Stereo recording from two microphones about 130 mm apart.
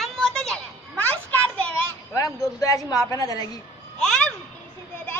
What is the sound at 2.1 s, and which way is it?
A woman's voice, 30° left (ahead or behind).